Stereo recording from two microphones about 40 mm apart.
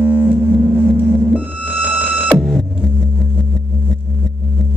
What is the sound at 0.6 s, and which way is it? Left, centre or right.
Vehicle, centre.